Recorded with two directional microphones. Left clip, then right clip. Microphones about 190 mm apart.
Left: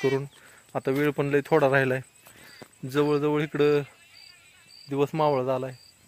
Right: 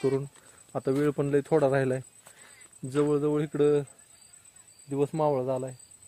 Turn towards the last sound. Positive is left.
turn(degrees=10)  # may be behind; listen again after turning